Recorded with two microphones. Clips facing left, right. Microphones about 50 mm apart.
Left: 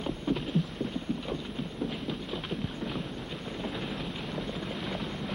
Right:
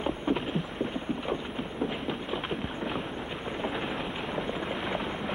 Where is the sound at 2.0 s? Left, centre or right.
Right.